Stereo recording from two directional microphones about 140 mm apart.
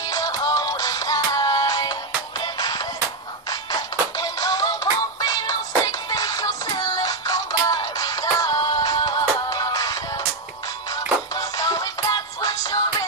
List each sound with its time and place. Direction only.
0.0 s music: 25° left (ahead or behind)
11.3 s music: 25° left (ahead or behind)